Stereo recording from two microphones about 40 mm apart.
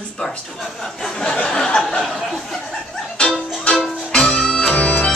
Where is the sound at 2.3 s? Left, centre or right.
Centre.